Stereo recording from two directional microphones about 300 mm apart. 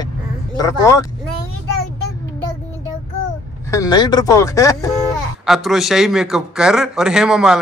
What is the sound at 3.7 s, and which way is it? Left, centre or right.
Speech, centre.